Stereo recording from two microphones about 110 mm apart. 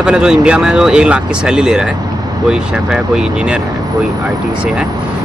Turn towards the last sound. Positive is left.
turn(degrees=-10)  # may be behind; listen again after turning